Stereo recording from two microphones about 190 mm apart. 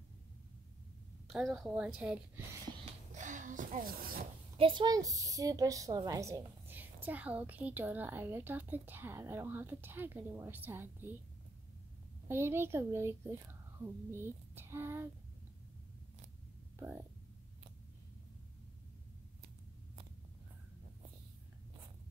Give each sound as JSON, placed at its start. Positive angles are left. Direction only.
{"t": 1.3, "sound": "a woman's voice", "side_deg": 0}
{"t": 3.2, "sound": "speech", "side_deg": -40}
{"t": 4.6, "sound": "a woman's voice", "side_deg": -25}
{"t": 12.3, "sound": "a woman's voice", "side_deg": -15}
{"t": 14.1, "sound": "a sound", "side_deg": -10}
{"t": 16.8, "sound": "a woman's voice", "side_deg": -20}